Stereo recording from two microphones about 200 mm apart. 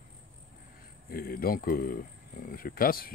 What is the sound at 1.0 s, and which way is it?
Speech, 50° left (ahead or behind).